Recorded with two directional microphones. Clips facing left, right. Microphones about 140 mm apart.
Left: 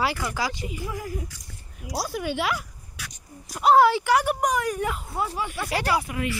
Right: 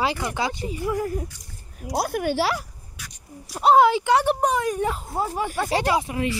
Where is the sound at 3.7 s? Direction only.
20° right (ahead or behind); by 5.7 s 45° right (ahead or behind).